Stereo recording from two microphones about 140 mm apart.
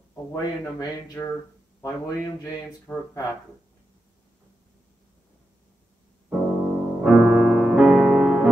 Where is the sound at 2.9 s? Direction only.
15° left (ahead or behind).